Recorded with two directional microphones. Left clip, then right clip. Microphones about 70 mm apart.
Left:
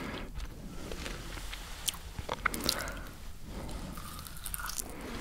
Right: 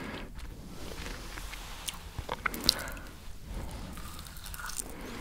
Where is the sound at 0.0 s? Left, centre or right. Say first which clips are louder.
Even; left.